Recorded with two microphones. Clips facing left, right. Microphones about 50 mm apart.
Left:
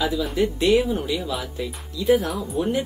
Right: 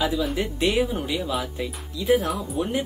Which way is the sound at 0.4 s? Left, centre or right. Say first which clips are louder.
Left 6 dB; centre.